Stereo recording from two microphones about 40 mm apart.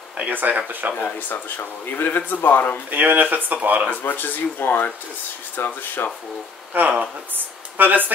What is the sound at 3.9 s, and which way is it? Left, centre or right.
Speech, left.